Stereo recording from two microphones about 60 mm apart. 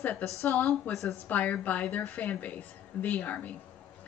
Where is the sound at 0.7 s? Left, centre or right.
Centre.